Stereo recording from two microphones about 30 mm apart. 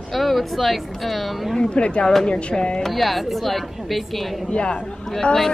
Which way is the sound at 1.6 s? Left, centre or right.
Left.